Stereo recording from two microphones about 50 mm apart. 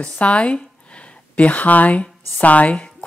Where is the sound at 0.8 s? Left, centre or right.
Left.